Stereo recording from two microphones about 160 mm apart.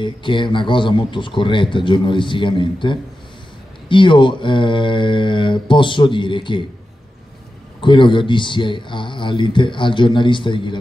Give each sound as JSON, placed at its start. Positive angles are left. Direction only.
{"t": 0.0, "sound": "speech", "side_deg": 30}
{"t": 7.8, "sound": "speech", "side_deg": 30}